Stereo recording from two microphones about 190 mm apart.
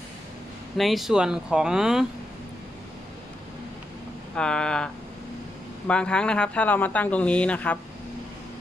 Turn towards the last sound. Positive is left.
turn(degrees=10)  # may be behind; listen again after turning